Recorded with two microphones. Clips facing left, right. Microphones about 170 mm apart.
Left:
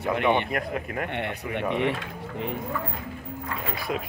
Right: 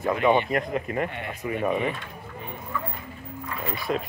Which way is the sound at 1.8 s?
90° left.